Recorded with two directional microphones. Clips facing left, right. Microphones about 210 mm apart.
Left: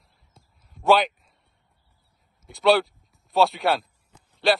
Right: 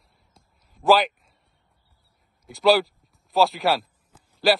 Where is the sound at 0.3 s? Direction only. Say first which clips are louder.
Left 5 dB; centre (ahead or behind).